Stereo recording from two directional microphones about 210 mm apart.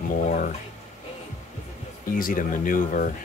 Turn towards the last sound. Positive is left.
turn(degrees=40)  # may be behind; listen again after turning